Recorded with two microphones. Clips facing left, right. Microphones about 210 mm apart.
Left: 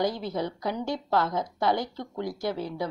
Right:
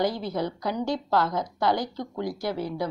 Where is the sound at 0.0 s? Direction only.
20° left (ahead or behind).